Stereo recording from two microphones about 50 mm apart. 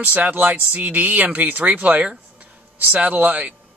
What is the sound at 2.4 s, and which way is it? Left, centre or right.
Speech, right.